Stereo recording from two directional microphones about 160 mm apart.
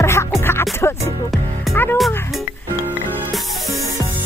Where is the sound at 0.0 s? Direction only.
15° left (ahead or behind).